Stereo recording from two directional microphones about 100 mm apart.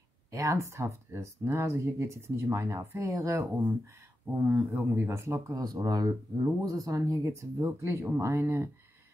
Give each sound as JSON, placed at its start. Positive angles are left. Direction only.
{"t": 0.3, "sound": "speech", "side_deg": -30}
{"t": 4.5, "sound": "speech", "side_deg": -15}